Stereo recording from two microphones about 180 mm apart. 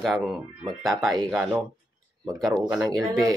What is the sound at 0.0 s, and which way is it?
Speech, centre (ahead or behind).